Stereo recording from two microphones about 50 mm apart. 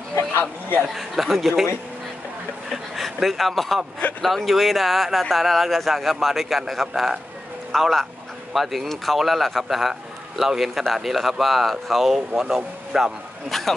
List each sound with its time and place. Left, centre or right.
0.4 s speech: left
0.8 s speech: centre
2.7 s speech: centre
13.5 s speech: centre